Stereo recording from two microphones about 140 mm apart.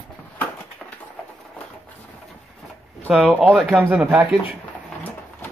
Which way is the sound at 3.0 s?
5° right (ahead or behind).